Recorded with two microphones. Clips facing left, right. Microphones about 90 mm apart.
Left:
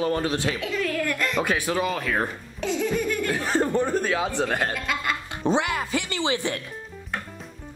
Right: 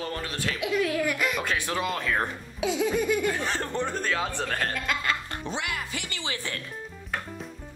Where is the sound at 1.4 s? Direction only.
10° left (ahead or behind).